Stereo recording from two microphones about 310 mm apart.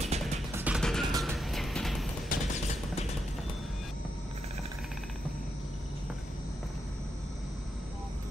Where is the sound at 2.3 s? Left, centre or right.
Left.